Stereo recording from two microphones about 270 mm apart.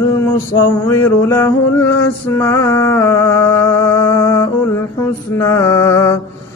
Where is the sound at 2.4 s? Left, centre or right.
Centre.